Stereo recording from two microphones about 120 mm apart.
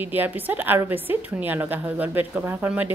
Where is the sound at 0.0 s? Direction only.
15° right (ahead or behind).